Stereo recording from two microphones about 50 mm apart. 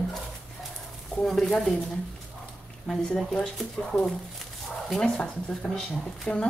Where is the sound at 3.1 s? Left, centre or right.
Centre.